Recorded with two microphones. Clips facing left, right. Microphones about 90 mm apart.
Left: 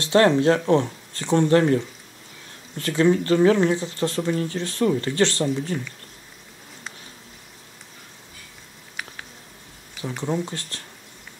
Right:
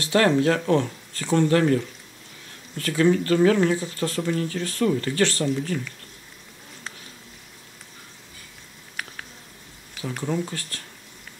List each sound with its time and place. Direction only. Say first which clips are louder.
0.0 s speech: left 2 dB; 25° left (ahead or behind)
10.2 s speech: left 1 dB; 25° left (ahead or behind)